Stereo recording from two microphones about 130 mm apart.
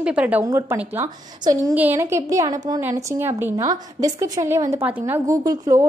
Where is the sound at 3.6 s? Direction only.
25° right (ahead or behind).